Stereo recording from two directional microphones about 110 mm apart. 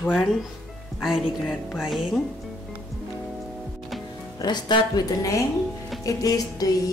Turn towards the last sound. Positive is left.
turn(degrees=35)  # may be behind; listen again after turning